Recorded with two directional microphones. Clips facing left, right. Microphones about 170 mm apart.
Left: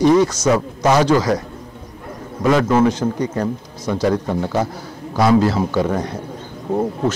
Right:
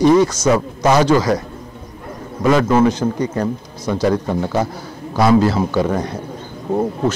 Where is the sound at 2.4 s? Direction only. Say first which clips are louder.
Right 1 dB; 25° right (ahead or behind).